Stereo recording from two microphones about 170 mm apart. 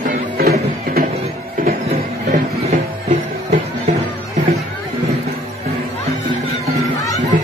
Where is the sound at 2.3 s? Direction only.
45° right (ahead or behind).